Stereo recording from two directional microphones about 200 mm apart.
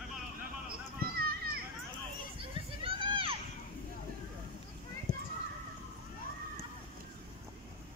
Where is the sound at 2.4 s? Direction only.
25° right (ahead or behind).